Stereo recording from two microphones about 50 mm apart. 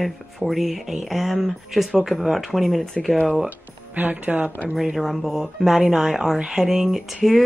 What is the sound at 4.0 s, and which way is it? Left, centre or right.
Speech, right.